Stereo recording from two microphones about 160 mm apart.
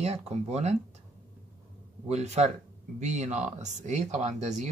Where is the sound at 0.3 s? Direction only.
40° right (ahead or behind).